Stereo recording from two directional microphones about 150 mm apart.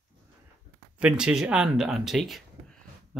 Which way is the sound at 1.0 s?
5° right (ahead or behind).